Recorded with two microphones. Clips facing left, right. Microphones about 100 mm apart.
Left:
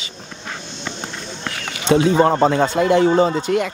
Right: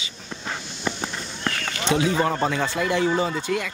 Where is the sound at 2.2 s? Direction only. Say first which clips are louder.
Left 8 dB; 35° left (ahead or behind).